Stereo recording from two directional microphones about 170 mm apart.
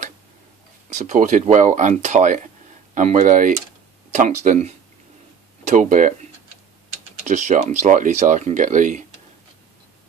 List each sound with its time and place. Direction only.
0.8 s speech: 45° right (ahead or behind)
7.2 s speech: 45° right (ahead or behind)